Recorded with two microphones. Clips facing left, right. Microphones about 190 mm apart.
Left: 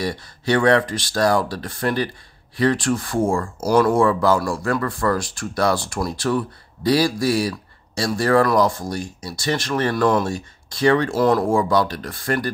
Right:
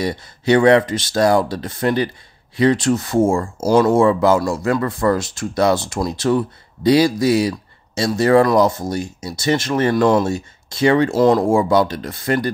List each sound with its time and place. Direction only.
0.0 s speech: 20° right (ahead or behind)